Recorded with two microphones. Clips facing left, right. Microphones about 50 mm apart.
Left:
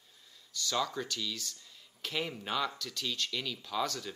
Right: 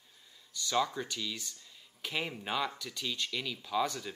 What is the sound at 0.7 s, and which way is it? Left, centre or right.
Speech, right.